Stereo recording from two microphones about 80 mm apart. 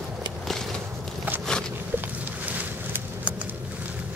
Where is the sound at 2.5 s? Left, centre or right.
Right.